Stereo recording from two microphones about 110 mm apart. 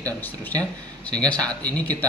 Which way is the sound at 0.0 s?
15° left (ahead or behind).